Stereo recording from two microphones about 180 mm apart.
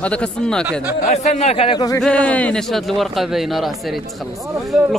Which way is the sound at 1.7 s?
20° left (ahead or behind).